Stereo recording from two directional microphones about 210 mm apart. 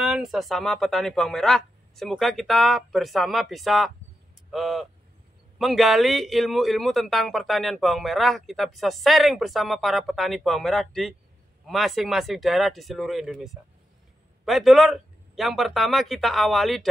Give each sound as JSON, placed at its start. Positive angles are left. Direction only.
{"t": 0.0, "sound": "a man's voice", "side_deg": 0}